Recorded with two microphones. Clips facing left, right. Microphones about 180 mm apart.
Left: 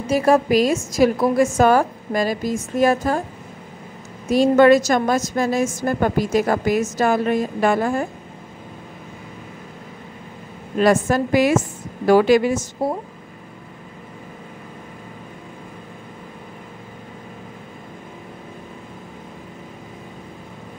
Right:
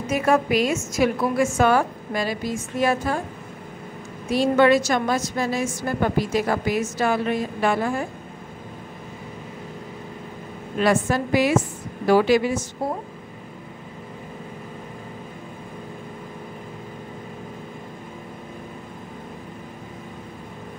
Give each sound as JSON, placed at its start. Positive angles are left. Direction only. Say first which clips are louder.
{"t": 0.0, "sound": "a woman's voice", "louder": "left 4 dB", "side_deg": 35}
{"t": 4.3, "sound": "a woman's voice", "louder": "left 4 dB", "side_deg": 45}
{"t": 10.8, "sound": "a woman's voice", "louder": "left 4 dB", "side_deg": 45}